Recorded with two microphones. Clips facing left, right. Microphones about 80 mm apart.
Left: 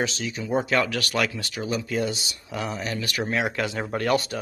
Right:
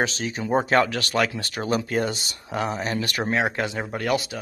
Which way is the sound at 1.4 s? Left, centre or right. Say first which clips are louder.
Right 3 dB; right.